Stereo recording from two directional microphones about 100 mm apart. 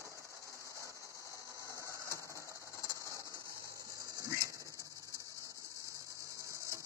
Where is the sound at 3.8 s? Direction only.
35° right (ahead or behind).